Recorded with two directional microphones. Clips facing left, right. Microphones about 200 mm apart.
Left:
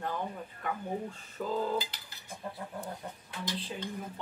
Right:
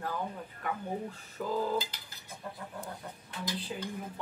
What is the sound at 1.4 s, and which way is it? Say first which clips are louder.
Speech: even; centre (ahead or behind).